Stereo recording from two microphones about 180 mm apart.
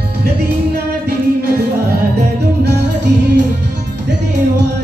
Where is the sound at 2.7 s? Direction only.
75° right (ahead or behind).